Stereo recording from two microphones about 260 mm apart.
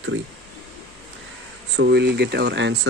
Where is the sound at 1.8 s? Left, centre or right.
Right.